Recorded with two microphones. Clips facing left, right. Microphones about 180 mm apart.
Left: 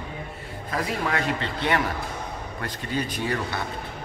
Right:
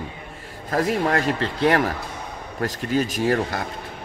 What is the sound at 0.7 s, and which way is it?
A man's voice, 45° right (ahead or behind).